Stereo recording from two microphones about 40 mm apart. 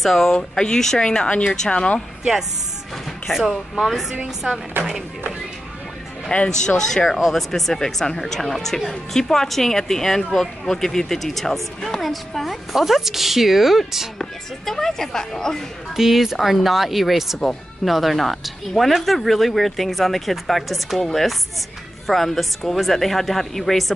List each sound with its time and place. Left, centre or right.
0.0 s speech: centre
1.7 s speech: left
3.3 s speech: centre
4.7 s speech: right
6.3 s speech: left
7.1 s speech: centre
14.7 s speech: centre
16.0 s speech: centre